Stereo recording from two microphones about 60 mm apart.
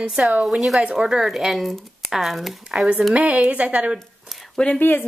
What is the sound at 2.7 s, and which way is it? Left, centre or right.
A woman's voice, right.